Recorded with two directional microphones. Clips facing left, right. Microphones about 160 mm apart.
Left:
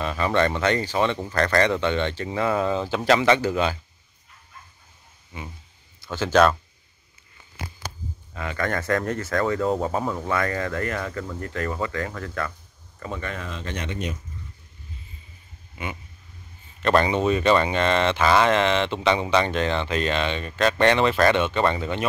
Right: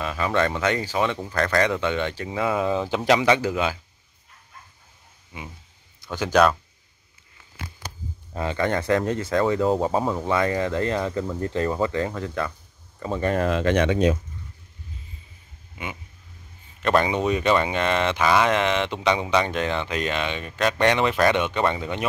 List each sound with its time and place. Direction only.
0.0 s speech: 5° right (ahead or behind)
5.3 s speech: 10° right (ahead or behind)
8.3 s speech: 30° right (ahead or behind)
13.1 s speech: 35° right (ahead or behind)
13.4 s speech: 70° right (ahead or behind)
16.8 s speech: 10° right (ahead or behind)